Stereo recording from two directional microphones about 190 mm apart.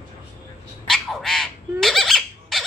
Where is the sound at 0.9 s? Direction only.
Centre (ahead or behind).